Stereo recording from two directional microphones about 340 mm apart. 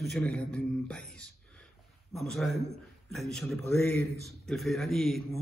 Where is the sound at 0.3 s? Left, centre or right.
Centre.